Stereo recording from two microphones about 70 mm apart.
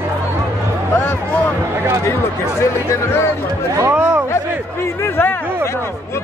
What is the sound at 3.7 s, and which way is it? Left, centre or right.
Speech, right.